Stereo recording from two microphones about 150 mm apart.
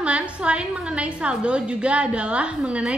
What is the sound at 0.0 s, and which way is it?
A woman's voice, 5° right (ahead or behind).